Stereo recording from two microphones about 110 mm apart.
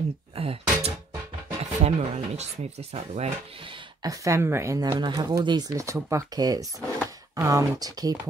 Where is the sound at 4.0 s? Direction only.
30° right (ahead or behind).